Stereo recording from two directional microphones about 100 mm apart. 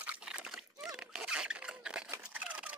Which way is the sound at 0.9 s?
10° right (ahead or behind).